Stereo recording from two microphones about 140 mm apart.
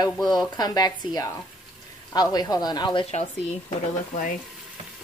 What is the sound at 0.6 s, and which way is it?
Speech, 30° left (ahead or behind).